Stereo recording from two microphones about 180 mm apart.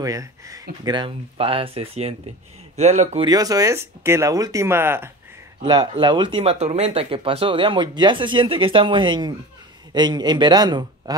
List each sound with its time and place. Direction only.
0.0 s speech: 20° right (ahead or behind); by 3.3 s 35° right (ahead or behind)
3.3 s speech: 20° right (ahead or behind)
5.6 s speech: 25° right (ahead or behind)